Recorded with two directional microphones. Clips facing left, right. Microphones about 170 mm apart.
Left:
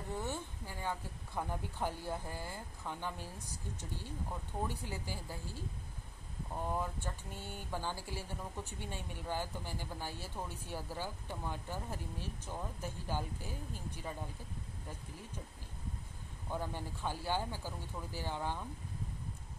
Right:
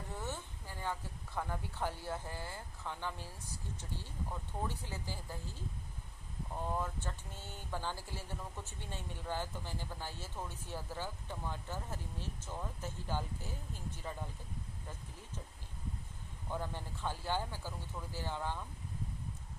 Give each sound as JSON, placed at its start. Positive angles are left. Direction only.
{"t": 0.1, "sound": "a woman's voice", "side_deg": 15}
{"t": 4.6, "sound": "speech", "side_deg": 15}
{"t": 6.8, "sound": "speech", "side_deg": 15}
{"t": 16.5, "sound": "speech", "side_deg": 10}